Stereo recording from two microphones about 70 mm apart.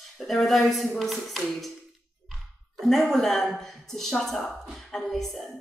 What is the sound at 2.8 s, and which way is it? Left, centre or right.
A woman's voice, centre.